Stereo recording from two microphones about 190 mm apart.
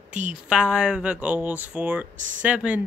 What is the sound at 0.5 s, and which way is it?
Speech, 5° right (ahead or behind).